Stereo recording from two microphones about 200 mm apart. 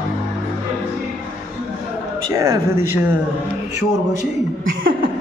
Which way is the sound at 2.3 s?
20° right (ahead or behind).